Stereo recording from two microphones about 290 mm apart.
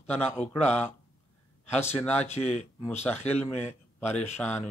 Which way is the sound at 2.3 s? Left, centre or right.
Left.